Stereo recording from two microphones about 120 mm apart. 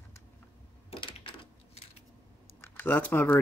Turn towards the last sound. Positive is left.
turn(degrees=15)  # may be behind; listen again after turning